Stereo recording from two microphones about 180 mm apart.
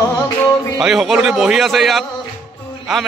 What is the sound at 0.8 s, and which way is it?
Speech, centre (ahead or behind).